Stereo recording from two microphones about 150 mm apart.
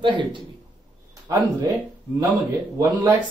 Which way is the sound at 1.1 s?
20° right (ahead or behind).